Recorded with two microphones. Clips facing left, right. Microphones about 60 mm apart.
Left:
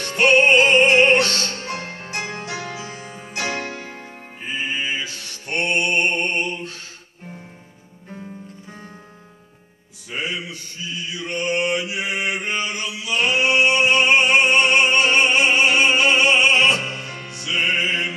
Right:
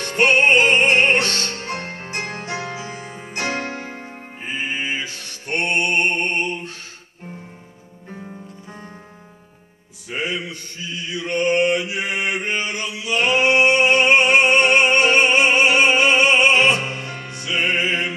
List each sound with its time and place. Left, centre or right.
0.0 s music: right
3.4 s music: right
10.0 s music: right
11.2 s mantra: right
17.3 s music: right